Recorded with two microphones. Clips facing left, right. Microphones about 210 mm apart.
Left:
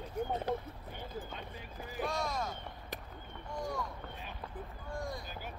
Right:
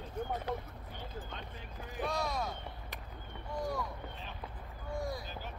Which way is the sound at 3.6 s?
5° right (ahead or behind).